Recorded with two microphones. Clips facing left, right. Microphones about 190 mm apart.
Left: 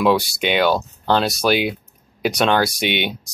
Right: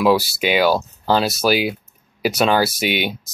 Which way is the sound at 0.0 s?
5° right (ahead or behind).